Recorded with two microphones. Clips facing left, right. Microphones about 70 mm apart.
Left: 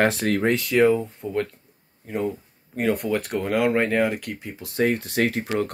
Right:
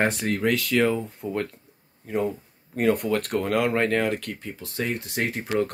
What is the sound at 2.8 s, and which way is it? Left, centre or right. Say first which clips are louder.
Speech: right 1 dB; centre.